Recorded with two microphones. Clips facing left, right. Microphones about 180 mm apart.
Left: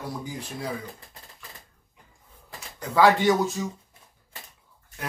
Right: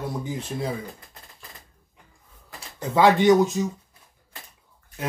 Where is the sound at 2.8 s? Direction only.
20° right (ahead or behind).